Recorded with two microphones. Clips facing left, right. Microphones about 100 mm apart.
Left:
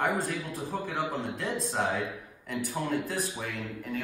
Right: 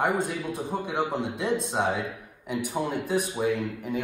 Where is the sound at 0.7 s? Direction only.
20° right (ahead or behind).